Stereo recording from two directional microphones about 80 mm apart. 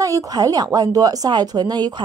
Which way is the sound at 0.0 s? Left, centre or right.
Right.